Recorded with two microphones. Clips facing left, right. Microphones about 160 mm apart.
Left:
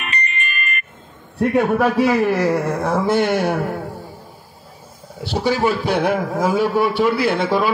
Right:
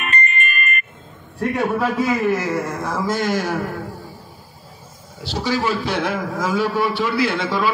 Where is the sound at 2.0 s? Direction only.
65° left (ahead or behind).